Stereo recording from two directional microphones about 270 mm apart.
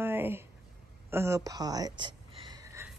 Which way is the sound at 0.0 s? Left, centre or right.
Centre.